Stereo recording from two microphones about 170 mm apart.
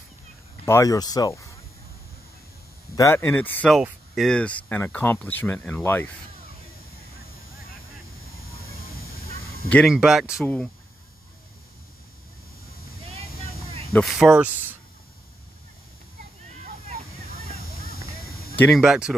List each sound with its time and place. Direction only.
0.7 s speech: 20° left (ahead or behind)
3.0 s speech: 15° left (ahead or behind)
3.7 s speech: centre (ahead or behind)
9.7 s speech: 5° left (ahead or behind)
13.9 s speech: centre (ahead or behind)
18.8 s speech: 5° right (ahead or behind)